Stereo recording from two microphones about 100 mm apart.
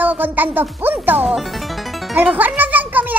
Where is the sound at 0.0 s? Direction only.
20° right (ahead or behind).